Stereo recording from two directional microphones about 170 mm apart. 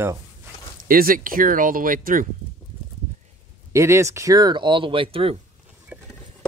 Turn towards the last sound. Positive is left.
turn(degrees=-5)  # may be behind; listen again after turning